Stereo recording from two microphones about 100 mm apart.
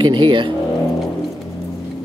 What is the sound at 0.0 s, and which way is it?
Speech, 50° right (ahead or behind).